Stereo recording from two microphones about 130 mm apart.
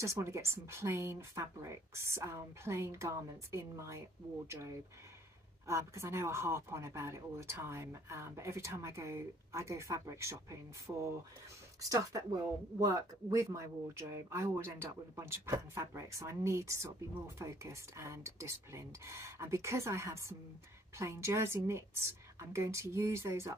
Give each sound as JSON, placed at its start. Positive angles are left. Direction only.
{"t": 0.0, "sound": "speech", "side_deg": -20}